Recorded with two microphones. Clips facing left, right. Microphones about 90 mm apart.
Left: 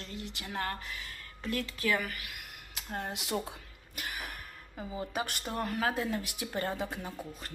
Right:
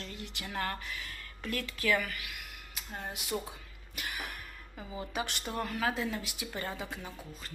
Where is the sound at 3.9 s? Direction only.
35° left (ahead or behind).